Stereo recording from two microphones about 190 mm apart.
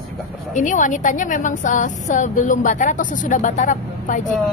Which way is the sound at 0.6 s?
40° left (ahead or behind).